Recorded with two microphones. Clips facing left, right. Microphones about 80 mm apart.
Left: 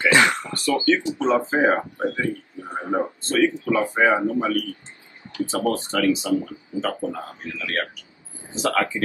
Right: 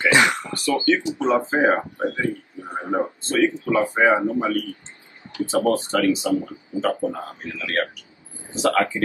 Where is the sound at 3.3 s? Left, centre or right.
Right.